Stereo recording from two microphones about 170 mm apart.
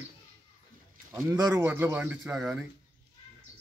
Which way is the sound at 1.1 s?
20° right (ahead or behind).